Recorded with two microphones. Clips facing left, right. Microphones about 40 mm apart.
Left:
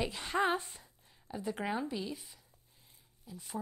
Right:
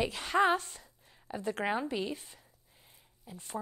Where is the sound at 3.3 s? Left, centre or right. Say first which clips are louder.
Right 1 dB; right.